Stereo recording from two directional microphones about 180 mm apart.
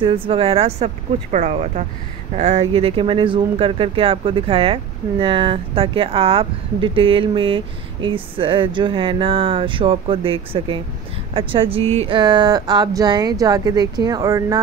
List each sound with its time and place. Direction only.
0.0 s speech: 30° right (ahead or behind)